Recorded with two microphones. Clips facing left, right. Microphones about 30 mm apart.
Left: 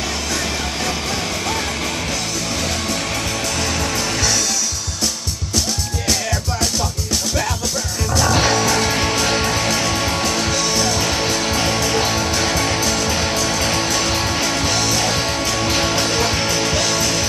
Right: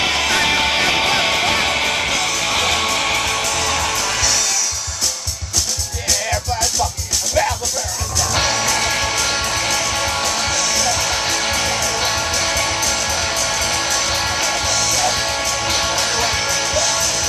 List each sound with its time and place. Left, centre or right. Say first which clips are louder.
0.0 s music: right 6 dB; right; by 3.9 s centre
8.4 s music: right 2 dB; centre
10.5 s music: even; centre
11.1 s music: even; centre
14.7 s music: even; centre
15.1 s music: even; centre
16.4 s music: even; centre